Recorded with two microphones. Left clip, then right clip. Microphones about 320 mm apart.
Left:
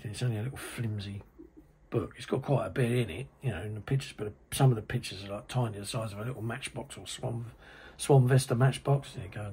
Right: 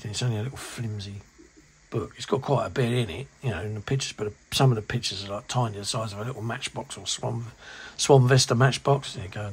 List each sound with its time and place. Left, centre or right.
0.0 s speech: centre